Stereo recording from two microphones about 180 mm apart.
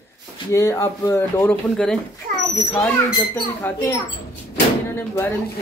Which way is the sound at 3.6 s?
10° left (ahead or behind).